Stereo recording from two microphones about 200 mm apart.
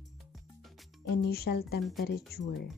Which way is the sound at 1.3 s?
50° left (ahead or behind).